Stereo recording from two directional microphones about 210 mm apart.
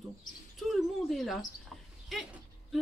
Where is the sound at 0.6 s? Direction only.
Centre (ahead or behind).